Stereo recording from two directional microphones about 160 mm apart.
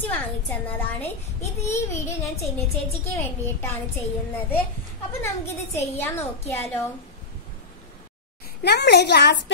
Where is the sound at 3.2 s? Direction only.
15° left (ahead or behind).